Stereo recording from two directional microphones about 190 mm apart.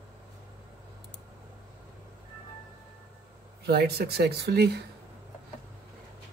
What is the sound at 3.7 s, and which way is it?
Speech, 55° right (ahead or behind).